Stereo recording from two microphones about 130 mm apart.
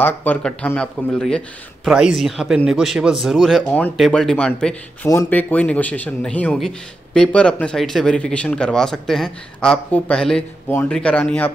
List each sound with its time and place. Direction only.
0.0 s speech: 15° left (ahead or behind)
1.9 s speech: 5° right (ahead or behind)
5.0 s speech: 25° left (ahead or behind)
5.3 s speech: 10° left (ahead or behind)